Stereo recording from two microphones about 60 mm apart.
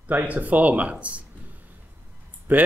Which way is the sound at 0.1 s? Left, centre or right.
Right.